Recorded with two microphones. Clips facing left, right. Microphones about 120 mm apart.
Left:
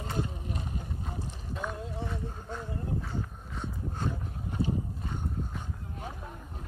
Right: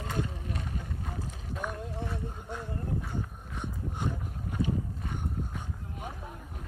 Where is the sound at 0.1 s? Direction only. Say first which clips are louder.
Even; 20° left (ahead or behind).